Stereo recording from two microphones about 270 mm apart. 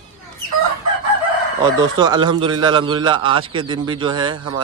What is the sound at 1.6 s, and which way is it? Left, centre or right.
A man's voice, centre.